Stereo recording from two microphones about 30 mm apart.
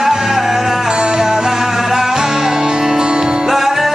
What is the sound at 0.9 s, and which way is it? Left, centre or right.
Music, right.